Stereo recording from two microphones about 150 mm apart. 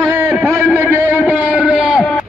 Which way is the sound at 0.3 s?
5° right (ahead or behind).